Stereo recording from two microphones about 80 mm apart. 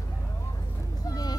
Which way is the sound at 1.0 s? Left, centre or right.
Left.